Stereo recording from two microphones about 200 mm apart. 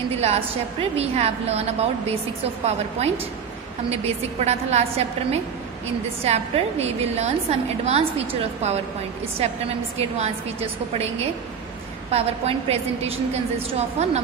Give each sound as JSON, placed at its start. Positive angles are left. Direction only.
{"t": 0.2, "sound": "a woman's voice", "side_deg": -30}
{"t": 9.9, "sound": "a woman's voice", "side_deg": -30}